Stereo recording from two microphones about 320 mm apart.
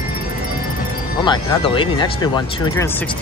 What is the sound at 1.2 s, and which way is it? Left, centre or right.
Speech, centre.